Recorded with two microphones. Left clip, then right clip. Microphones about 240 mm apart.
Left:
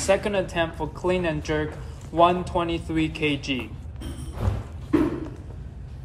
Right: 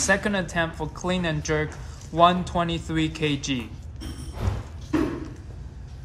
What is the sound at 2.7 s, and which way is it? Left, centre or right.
Speech, right.